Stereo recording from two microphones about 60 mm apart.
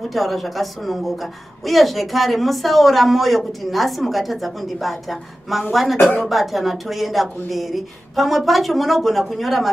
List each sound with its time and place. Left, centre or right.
0.1 s a woman's voice: centre